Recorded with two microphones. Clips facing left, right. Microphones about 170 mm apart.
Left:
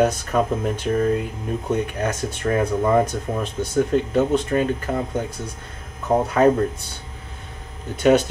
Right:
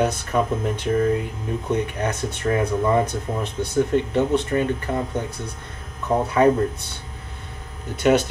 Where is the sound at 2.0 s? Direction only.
40° left (ahead or behind).